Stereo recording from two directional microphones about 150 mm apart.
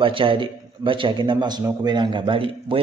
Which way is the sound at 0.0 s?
35° right (ahead or behind).